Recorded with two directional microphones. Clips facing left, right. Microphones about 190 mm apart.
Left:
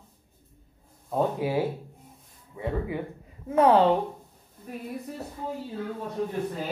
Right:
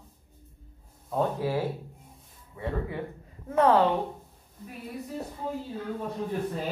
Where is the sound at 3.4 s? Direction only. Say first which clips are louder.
Left 2 dB; 10° left (ahead or behind).